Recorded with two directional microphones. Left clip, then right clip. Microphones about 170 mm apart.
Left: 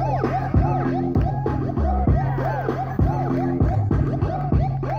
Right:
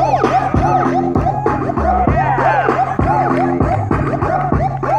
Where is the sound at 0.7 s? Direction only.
30° left (ahead or behind).